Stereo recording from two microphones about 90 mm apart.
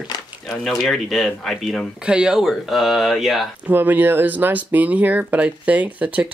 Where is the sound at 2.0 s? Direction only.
10° right (ahead or behind).